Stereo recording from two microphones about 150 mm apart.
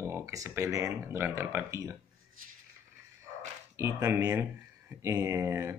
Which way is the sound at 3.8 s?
20° right (ahead or behind).